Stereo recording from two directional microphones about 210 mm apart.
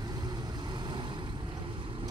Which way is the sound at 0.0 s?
20° right (ahead or behind).